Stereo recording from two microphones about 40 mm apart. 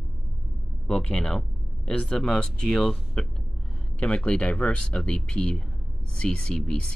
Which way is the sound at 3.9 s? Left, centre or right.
Left.